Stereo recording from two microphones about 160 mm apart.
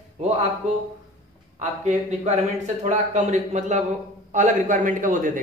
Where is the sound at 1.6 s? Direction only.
45° right (ahead or behind).